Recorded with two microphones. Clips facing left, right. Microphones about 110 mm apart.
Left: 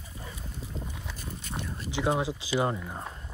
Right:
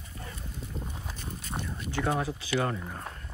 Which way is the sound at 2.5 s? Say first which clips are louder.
Left 2 dB; 20° left (ahead or behind).